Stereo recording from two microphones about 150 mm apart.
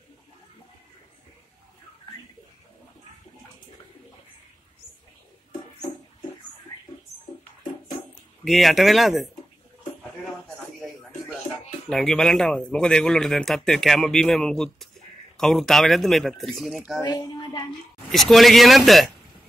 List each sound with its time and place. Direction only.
8.5 s speech: centre (ahead or behind)
11.9 s speech: centre (ahead or behind)
17.2 s child singing: 25° left (ahead or behind)
18.1 s speech: centre (ahead or behind)